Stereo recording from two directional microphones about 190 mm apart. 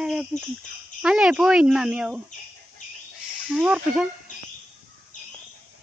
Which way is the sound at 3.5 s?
5° right (ahead or behind).